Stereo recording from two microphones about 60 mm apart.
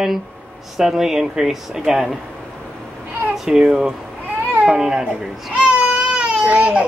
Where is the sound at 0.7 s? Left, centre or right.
Centre.